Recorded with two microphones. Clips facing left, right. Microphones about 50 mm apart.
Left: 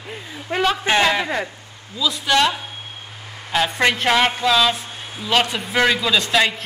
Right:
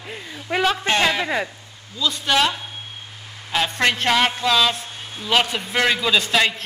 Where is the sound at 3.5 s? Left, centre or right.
Centre.